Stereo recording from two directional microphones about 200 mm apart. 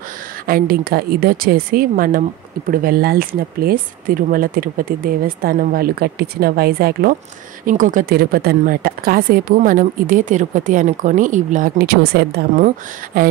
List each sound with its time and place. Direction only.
0.5 s a woman's voice: 50° right (ahead or behind)